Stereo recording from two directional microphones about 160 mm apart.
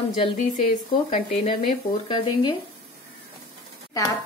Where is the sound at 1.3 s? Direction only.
40° left (ahead or behind).